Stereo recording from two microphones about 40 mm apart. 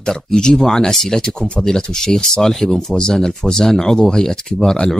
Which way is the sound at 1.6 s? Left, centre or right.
Centre.